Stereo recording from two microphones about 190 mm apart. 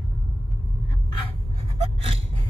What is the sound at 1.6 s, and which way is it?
Gasp, 30° right (ahead or behind).